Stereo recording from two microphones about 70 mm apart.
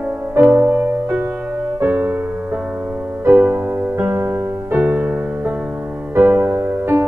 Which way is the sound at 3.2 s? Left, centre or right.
Right.